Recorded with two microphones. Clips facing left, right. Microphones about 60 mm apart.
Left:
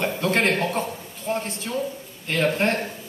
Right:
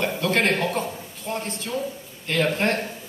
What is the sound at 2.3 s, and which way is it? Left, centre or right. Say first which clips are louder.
Speech: left 1 dB; left.